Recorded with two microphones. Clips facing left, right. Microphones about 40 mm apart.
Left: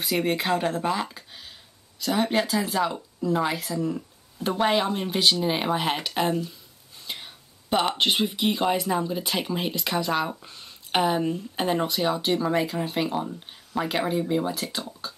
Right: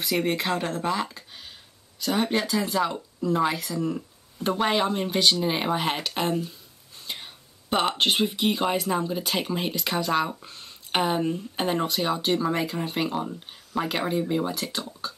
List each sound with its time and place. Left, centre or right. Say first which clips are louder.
0.0 s speech: even; centre
3.7 s speech: left 1 dB; centre
4.6 s speech: left 1 dB; centre